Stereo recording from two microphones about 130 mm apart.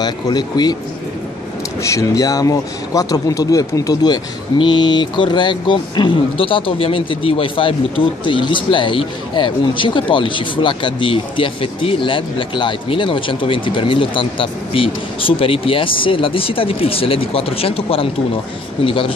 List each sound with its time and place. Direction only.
0.0 s speech: 35° left (ahead or behind)
1.8 s speech: 25° left (ahead or behind); by 19.1 s 45° left (ahead or behind)